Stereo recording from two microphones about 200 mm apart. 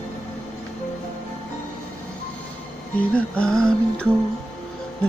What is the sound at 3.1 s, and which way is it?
Music, 5° left (ahead or behind).